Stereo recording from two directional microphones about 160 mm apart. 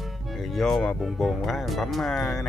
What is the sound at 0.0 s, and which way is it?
Speech, centre (ahead or behind).